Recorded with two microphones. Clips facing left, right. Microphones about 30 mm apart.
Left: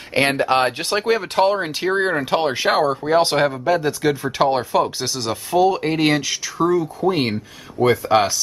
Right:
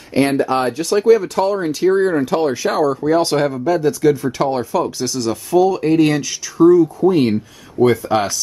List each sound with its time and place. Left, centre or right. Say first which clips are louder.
0.1 s speech: right 2 dB; left